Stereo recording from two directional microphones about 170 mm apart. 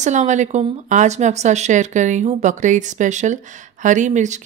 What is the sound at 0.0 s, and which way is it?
Speech, 45° right (ahead or behind).